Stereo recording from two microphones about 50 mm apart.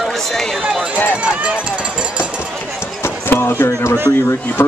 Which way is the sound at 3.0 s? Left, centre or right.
Left.